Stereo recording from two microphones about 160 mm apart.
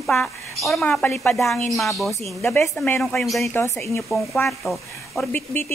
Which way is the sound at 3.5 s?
15° left (ahead or behind).